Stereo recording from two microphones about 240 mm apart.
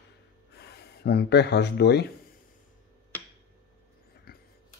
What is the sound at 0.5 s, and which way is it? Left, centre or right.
Speech, left.